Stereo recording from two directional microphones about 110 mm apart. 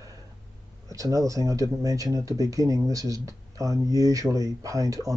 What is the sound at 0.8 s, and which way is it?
Speech, 30° right (ahead or behind).